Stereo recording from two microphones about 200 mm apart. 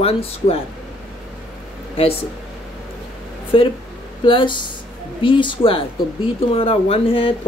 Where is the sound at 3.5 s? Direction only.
25° left (ahead or behind).